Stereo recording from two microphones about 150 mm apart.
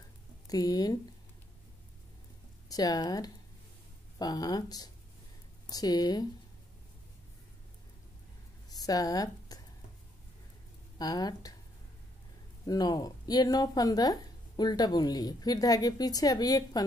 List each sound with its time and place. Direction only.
0.5 s speech: 25° left (ahead or behind)
2.7 s speech: 25° left (ahead or behind)
8.6 s a sound: 25° left (ahead or behind)
11.0 s speech: 25° left (ahead or behind)
12.6 s speech: 25° left (ahead or behind)